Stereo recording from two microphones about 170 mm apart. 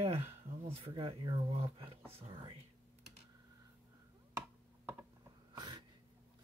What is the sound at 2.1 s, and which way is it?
Speech, 35° right (ahead or behind).